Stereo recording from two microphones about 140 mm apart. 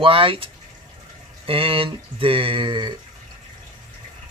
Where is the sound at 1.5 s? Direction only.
40° right (ahead or behind).